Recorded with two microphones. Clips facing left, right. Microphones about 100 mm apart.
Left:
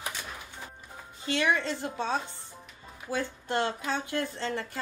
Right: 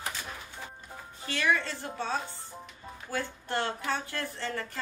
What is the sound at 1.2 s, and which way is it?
Speech, 20° left (ahead or behind).